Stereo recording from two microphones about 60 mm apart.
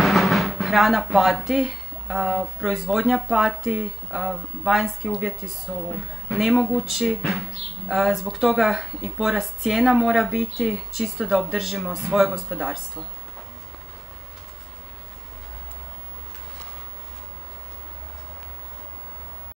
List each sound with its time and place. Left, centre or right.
0.0 s drum: centre
1.1 s speech: centre